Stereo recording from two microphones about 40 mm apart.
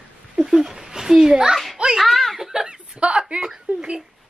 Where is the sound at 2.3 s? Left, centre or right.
Centre.